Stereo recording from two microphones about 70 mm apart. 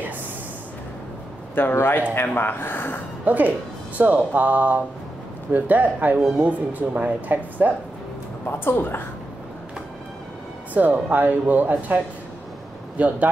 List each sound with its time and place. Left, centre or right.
1.5 s a man's voice: left
3.3 s speech: right
8.5 s a man's voice: left
10.7 s speech: right